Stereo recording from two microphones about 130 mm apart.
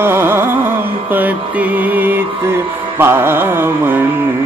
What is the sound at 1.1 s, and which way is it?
Mantra, 15° right (ahead or behind).